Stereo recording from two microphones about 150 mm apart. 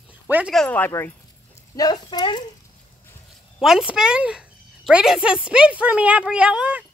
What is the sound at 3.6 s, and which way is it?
Speech, 5° right (ahead or behind).